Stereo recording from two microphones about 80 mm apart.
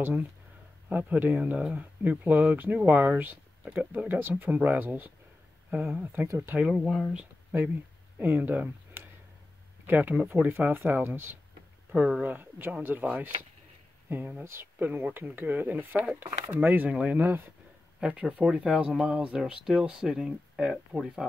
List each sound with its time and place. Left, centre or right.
0.0 s speech: right
6.2 s speech: right
6.7 s speech: centre
8.2 s speech: right
18.0 s speech: centre